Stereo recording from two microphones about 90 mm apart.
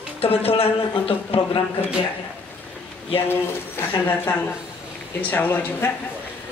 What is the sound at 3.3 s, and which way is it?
Speech, 25° left (ahead or behind).